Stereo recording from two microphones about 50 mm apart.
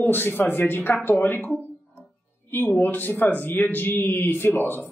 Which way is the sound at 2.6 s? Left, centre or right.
Left.